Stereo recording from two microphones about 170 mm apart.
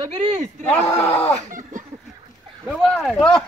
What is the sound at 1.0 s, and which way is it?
Speech, 40° left (ahead or behind).